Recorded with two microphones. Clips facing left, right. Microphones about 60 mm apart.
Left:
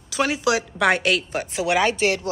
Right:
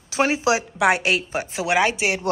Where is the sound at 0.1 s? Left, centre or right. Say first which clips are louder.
Right 1 dB; right.